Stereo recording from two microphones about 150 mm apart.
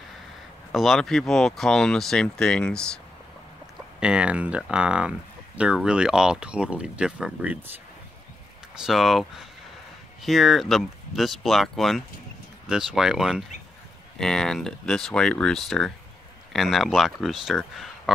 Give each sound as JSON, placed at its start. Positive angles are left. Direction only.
{"t": 0.7, "sound": "speech", "side_deg": 0}
{"t": 4.0, "sound": "speech", "side_deg": -5}
{"t": 8.7, "sound": "speech", "side_deg": 0}